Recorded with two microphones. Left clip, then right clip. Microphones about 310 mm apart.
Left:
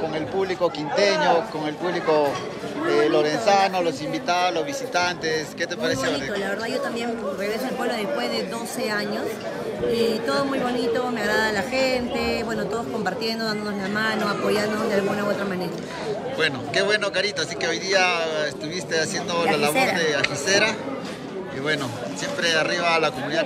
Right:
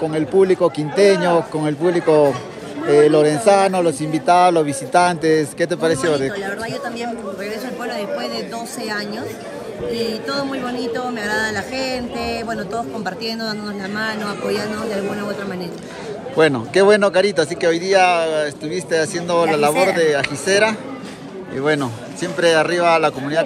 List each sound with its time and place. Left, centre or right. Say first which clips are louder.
0.1 s speech: right 10 dB; centre
7.8 s speech: right 2 dB; centre
9.9 s speech: even; centre
16.3 s speech: right 9 dB; centre